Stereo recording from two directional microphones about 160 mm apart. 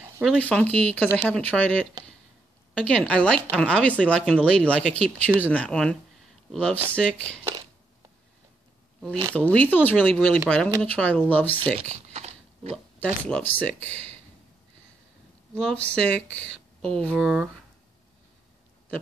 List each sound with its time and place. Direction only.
0.4 s speech: 10° left (ahead or behind)
9.3 s speech: 5° left (ahead or behind)
11.7 s a sound: 45° right (ahead or behind)
12.7 s speech: 10° left (ahead or behind)
15.5 s speech: 5° left (ahead or behind)